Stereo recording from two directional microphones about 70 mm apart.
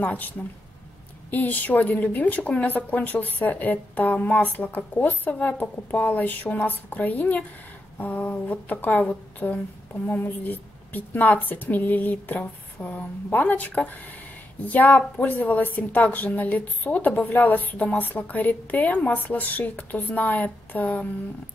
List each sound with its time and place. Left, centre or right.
0.0 s a woman's voice: left